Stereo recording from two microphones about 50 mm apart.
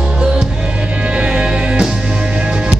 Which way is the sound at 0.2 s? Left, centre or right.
Centre.